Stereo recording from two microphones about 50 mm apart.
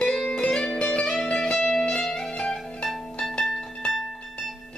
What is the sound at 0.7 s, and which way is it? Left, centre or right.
Music, centre.